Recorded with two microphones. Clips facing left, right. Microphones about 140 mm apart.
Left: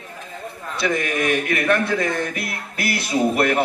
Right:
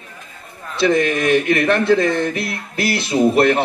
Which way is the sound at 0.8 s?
25° right (ahead or behind).